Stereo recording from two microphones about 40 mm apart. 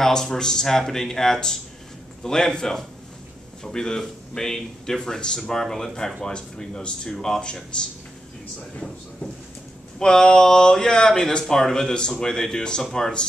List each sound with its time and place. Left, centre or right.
0.0 s speech: centre
9.9 s speech: centre